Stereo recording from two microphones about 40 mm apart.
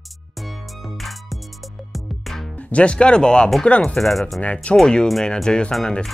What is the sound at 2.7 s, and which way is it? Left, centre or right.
Speech, left.